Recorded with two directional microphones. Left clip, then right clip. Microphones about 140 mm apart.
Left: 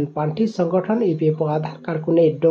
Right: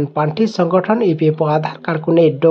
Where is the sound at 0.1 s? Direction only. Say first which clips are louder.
Right 6 dB; 10° right (ahead or behind).